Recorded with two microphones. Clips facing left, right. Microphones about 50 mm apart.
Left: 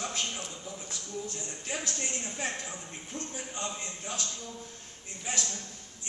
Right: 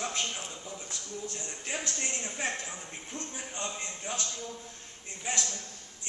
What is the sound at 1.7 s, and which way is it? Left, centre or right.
Speech, centre.